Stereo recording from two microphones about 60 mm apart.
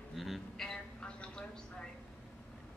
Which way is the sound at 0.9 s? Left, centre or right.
Centre.